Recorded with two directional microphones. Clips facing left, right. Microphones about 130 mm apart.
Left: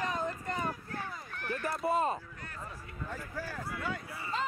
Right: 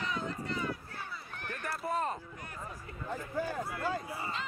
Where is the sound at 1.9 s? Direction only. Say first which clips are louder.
Left 4 dB; 10° left (ahead or behind).